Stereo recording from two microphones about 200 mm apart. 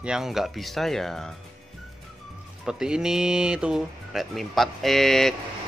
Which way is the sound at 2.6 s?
5° right (ahead or behind).